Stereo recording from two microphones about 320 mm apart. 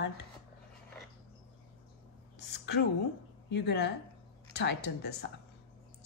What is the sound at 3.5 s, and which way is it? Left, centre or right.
A woman's voice, left.